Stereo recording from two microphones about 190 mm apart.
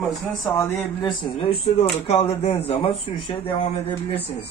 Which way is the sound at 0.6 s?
25° left (ahead or behind).